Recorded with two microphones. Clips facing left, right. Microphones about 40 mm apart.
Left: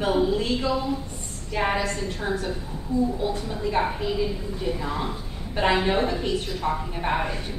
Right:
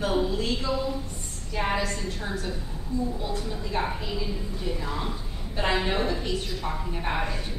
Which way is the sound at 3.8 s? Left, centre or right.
Centre.